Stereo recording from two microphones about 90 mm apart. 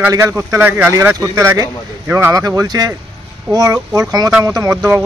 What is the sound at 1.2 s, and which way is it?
Speech, 35° right (ahead or behind).